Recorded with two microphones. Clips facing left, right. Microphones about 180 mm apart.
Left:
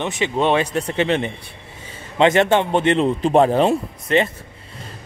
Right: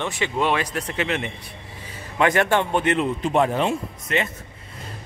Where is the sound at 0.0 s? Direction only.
20° left (ahead or behind).